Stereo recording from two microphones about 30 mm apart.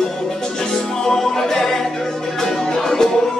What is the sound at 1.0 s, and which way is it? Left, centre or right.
Music, centre.